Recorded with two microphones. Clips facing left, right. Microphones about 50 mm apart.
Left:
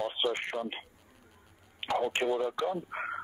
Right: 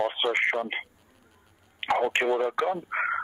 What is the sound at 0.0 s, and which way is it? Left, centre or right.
Speech, right.